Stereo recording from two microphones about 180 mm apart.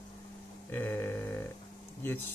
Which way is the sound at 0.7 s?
10° left (ahead or behind).